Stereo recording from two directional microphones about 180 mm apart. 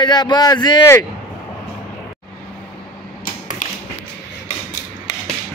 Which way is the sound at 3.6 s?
50° left (ahead or behind).